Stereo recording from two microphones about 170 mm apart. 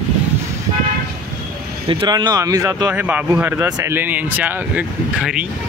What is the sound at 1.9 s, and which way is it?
Speech, 25° right (ahead or behind).